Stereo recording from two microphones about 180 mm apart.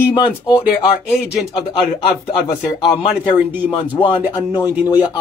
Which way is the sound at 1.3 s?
25° left (ahead or behind).